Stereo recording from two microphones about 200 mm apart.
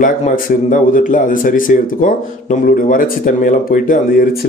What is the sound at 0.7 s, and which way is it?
Speech, 40° left (ahead or behind).